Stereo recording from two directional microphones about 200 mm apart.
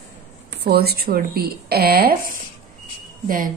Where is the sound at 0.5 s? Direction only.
50° right (ahead or behind).